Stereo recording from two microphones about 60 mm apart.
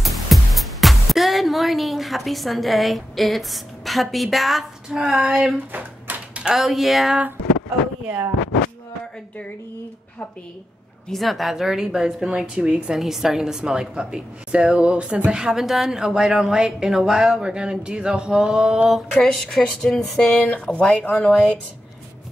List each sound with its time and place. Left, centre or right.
0.0 s speech: centre
5.7 s typewriter: right
6.4 s speech: centre
11.1 s a woman's voice: centre
20.6 s speech: left